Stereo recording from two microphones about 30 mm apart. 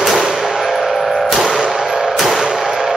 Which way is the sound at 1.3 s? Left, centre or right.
Centre.